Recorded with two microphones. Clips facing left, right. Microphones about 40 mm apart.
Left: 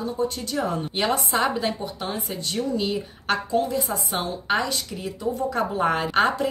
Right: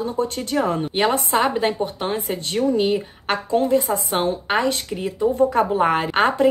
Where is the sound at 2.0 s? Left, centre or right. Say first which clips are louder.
Right 5 dB; right.